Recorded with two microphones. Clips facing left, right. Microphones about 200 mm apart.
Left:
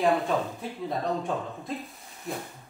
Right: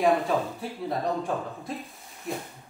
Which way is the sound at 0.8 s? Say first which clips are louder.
Right 1 dB; centre (ahead or behind).